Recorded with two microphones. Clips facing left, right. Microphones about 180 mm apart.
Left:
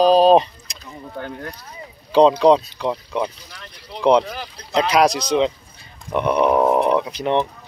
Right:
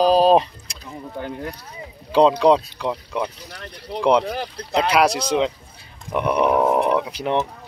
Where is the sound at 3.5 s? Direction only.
60° right (ahead or behind).